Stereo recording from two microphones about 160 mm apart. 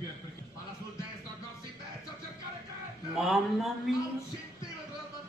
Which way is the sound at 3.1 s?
Centre (ahead or behind).